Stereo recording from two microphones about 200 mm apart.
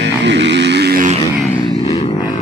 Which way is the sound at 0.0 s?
60° right (ahead or behind).